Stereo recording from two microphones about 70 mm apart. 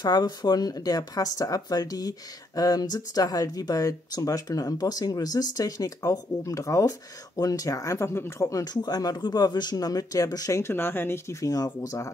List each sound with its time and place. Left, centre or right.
0.0 s speech: left
8.1 s speech: left
8.8 s speech: left
10.6 s speech: left
11.4 s speech: left